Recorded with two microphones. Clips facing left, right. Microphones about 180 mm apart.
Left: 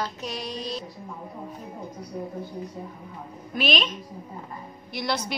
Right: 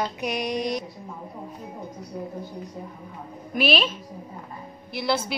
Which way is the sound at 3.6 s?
10° right (ahead or behind).